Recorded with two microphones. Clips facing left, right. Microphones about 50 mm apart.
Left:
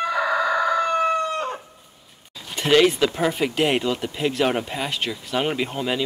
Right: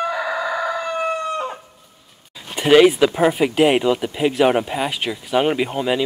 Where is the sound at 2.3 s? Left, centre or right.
Centre.